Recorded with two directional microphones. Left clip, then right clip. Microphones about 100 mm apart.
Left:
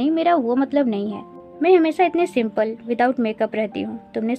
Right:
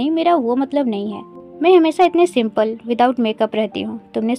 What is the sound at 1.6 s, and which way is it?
A woman's voice, 50° right (ahead or behind).